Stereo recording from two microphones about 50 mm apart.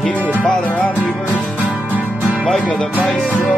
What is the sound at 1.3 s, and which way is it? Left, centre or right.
Music, right.